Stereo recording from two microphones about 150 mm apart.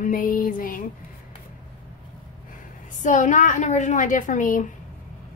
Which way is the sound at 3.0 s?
55° left (ahead or behind).